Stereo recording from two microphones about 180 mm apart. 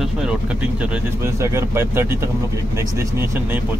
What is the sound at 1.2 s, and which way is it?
Speech, 15° right (ahead or behind).